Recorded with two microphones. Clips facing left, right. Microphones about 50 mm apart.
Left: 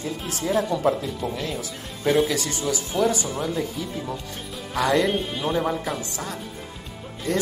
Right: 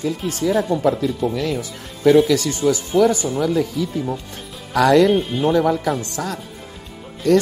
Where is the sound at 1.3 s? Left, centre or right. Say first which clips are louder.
Right 7 dB; right.